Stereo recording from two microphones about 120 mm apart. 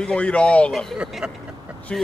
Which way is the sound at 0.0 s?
10° left (ahead or behind).